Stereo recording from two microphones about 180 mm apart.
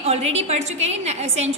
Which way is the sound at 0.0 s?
35° right (ahead or behind).